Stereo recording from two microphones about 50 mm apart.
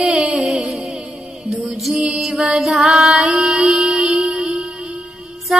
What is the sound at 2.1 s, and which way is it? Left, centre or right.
Music, centre.